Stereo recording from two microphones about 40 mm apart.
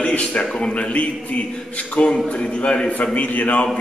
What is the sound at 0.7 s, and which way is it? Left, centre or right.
A man's voice, left.